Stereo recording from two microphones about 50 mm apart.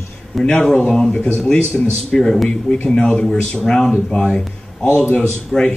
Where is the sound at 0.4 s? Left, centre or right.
Centre.